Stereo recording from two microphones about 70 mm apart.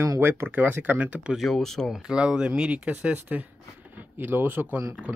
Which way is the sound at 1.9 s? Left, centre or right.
Centre.